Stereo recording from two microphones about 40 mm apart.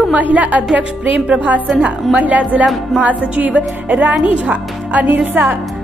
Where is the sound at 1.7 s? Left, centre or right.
Right.